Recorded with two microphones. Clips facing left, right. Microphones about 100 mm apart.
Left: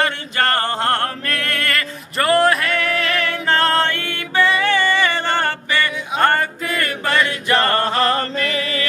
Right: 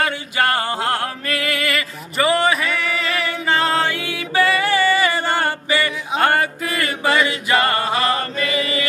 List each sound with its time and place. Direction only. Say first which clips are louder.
0.0 s chant: even; 10° right (ahead or behind)
4.6 s music: even; 10° right (ahead or behind)